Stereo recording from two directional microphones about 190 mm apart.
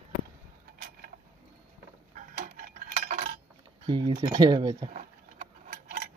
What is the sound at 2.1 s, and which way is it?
Cutlery, 45° right (ahead or behind).